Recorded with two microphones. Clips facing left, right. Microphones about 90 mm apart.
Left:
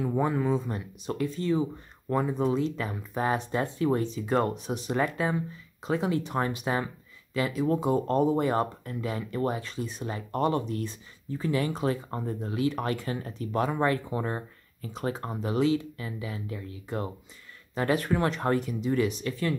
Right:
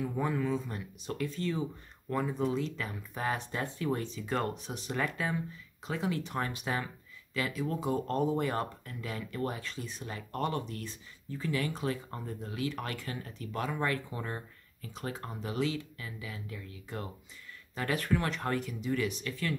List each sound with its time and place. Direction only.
0.0 s speech: 25° left (ahead or behind)